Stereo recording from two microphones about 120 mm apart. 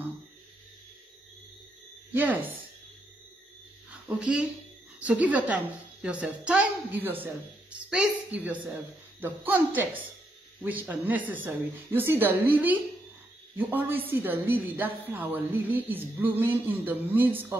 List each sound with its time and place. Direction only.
4.2 s a woman's voice: 10° right (ahead or behind)